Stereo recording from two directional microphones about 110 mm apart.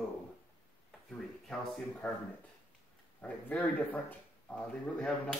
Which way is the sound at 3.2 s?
10° left (ahead or behind).